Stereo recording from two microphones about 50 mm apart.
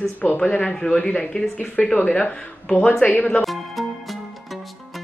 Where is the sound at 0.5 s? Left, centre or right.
Left.